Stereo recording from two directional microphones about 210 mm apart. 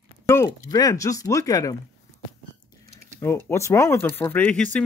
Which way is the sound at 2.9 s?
10° left (ahead or behind).